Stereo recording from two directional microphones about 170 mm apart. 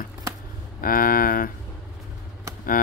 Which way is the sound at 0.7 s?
55° left (ahead or behind).